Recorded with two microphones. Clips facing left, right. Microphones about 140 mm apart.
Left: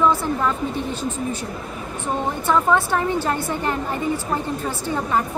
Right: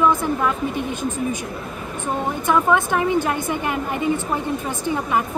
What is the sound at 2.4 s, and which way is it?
A woman's voice, 15° right (ahead or behind).